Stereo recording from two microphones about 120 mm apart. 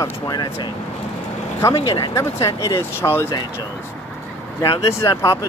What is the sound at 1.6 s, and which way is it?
Speech, 25° left (ahead or behind).